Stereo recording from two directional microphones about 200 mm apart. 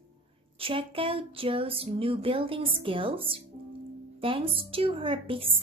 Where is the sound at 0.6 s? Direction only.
25° right (ahead or behind).